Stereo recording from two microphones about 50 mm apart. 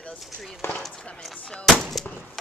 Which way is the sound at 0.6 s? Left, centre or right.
Left.